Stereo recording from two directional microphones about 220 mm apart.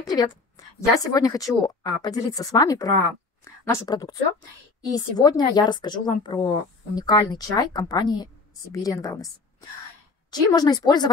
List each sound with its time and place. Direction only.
0.0 s a woman's voice: 15° left (ahead or behind)